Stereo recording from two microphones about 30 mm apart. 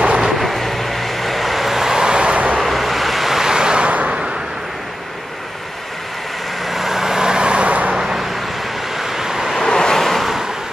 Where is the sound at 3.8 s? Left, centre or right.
Right.